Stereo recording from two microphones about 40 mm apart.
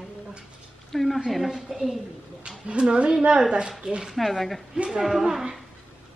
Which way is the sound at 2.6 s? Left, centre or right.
Right.